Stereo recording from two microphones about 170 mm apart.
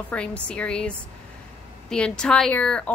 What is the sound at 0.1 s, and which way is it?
A woman's voice, 5° left (ahead or behind).